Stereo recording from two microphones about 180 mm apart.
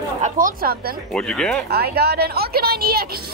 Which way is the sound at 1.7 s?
60° right (ahead or behind).